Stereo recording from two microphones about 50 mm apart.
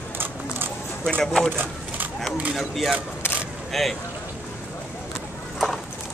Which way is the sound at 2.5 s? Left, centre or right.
Centre.